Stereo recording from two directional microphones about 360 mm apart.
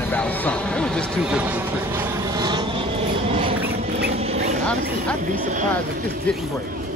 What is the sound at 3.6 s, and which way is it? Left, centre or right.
Duck, right.